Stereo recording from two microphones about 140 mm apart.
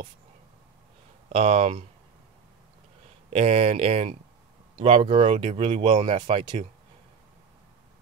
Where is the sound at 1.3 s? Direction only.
50° right (ahead or behind).